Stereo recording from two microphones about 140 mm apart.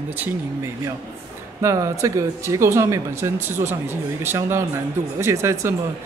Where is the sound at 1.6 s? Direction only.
20° right (ahead or behind).